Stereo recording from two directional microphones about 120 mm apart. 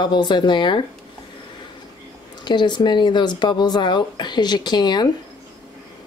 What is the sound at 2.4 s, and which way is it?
Speech, 40° left (ahead or behind).